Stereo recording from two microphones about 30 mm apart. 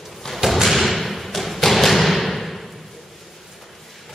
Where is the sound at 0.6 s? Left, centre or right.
Centre.